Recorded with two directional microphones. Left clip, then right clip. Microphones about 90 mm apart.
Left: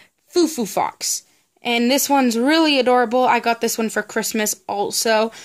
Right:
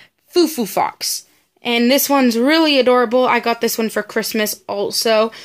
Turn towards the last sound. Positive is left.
turn(degrees=35)  # may be behind; listen again after turning